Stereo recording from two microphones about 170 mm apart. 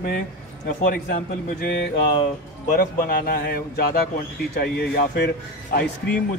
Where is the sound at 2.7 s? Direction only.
65° left (ahead or behind).